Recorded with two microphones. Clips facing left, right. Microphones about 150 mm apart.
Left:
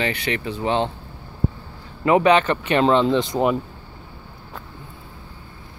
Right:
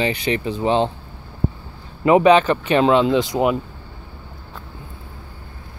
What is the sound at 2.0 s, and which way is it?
Speech, 20° right (ahead or behind).